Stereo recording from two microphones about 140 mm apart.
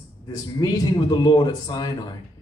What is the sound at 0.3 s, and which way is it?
A man's voice, 30° left (ahead or behind).